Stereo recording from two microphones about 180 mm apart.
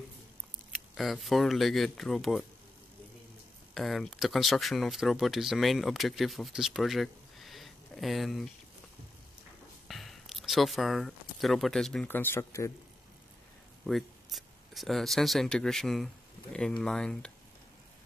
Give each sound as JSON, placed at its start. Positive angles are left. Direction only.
{"t": 0.9, "sound": "speech", "side_deg": 0}
{"t": 3.7, "sound": "speech", "side_deg": 0}
{"t": 9.8, "sound": "speech", "side_deg": 0}
{"t": 13.8, "sound": "speech", "side_deg": 0}